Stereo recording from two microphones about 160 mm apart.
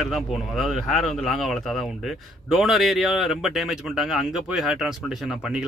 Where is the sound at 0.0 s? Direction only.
Centre (ahead or behind).